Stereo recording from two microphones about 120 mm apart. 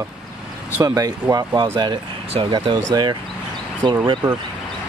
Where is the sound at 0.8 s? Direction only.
30° right (ahead or behind).